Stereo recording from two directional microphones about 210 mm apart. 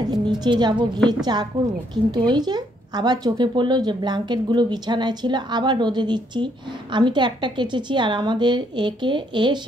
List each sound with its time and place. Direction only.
0.0 s a woman's voice: 20° right (ahead or behind)